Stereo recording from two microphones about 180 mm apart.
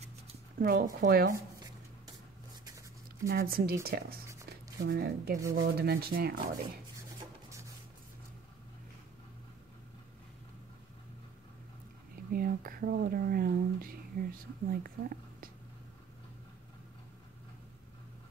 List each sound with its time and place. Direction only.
0.6 s rub: 55° right (ahead or behind)
3.3 s rub: 55° right (ahead or behind)
4.5 s speech: 60° right (ahead or behind)
5.5 s rub: 60° right (ahead or behind)
12.3 s speech: 55° right (ahead or behind)